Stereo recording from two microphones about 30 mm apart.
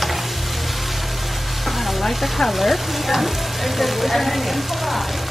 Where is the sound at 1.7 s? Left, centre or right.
Centre.